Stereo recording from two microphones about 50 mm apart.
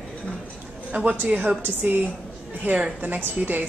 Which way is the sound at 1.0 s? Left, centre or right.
Right.